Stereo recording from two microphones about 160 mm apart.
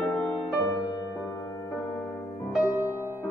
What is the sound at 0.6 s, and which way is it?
Music, 20° left (ahead or behind).